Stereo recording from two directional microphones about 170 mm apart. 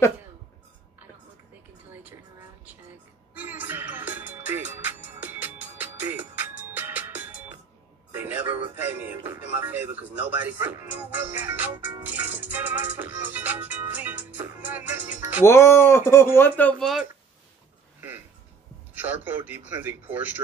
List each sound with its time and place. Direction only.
3.3 s music: 10° right (ahead or behind)
8.1 s speech: 10° right (ahead or behind)
15.4 s speech: 15° left (ahead or behind)
16.8 s speech: centre (ahead or behind)
19.2 s speech: 10° right (ahead or behind)